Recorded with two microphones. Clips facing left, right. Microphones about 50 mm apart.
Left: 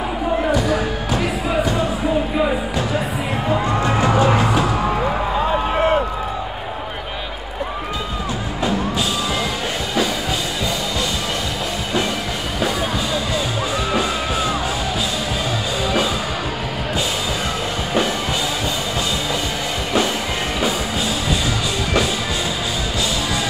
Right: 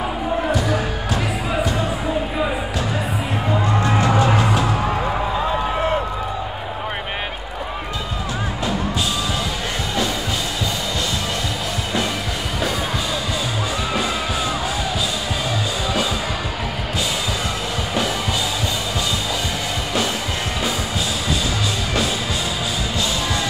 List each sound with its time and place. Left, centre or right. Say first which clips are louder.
1.1 s music: left 3 dB; centre
3.6 s music: right 1 dB; centre
4.6 s a sound: left 1 dB; centre